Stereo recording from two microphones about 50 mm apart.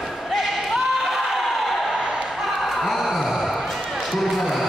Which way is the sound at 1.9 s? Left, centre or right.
Centre.